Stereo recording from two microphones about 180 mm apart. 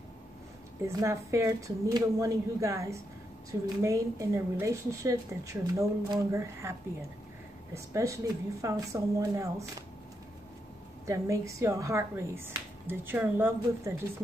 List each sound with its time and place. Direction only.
0.8 s a woman's voice: 15° right (ahead or behind)
11.1 s a woman's voice: 15° right (ahead or behind)